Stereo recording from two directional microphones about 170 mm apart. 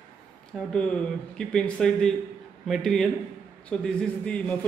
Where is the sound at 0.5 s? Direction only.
Centre (ahead or behind).